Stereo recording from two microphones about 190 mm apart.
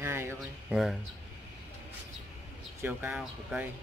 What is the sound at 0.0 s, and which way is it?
Music, 15° right (ahead or behind).